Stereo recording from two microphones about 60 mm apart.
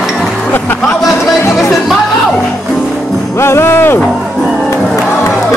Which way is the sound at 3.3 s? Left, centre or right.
Left.